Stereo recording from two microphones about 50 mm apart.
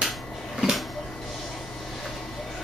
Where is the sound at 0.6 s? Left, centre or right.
Centre.